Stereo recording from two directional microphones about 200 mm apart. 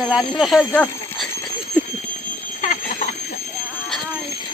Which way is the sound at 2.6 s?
40° left (ahead or behind).